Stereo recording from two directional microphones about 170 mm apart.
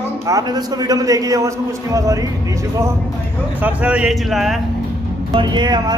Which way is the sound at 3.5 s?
10° right (ahead or behind).